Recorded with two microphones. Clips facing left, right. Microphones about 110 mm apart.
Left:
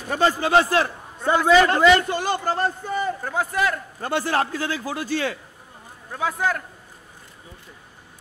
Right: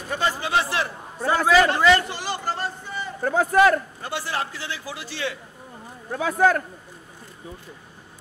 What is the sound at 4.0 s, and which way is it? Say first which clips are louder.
A man's voice: left 6 dB; 45° left (ahead or behind).